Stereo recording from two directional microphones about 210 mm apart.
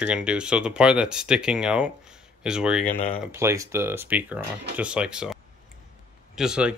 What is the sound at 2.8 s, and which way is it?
Speech, 30° left (ahead or behind).